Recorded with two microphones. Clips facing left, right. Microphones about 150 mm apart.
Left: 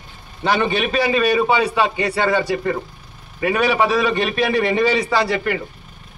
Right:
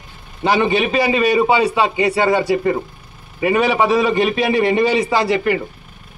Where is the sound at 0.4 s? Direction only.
10° right (ahead or behind).